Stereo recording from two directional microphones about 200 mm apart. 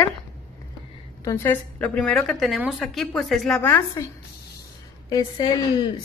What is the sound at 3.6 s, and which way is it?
Speech, 15° left (ahead or behind).